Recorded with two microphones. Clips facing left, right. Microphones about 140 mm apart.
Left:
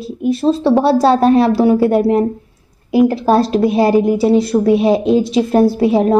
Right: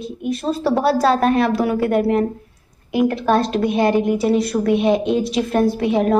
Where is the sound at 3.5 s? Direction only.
30° left (ahead or behind).